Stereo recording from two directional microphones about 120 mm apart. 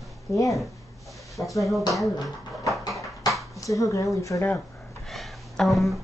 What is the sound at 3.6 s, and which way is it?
Speech, 25° left (ahead or behind).